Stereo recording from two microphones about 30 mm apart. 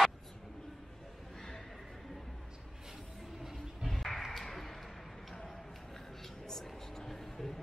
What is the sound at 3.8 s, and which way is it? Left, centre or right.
Music, centre.